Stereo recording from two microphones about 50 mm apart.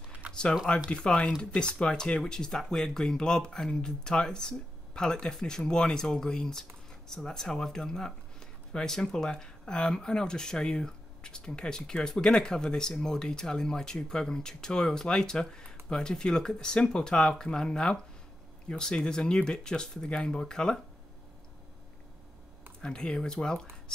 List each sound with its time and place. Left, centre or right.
0.3 s a sound: centre
1.0 s speech: centre
22.8 s speech: centre